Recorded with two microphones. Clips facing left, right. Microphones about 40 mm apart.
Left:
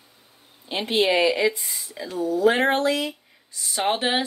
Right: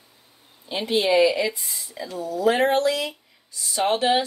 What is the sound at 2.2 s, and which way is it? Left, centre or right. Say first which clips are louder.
Speech: left 1 dB; left.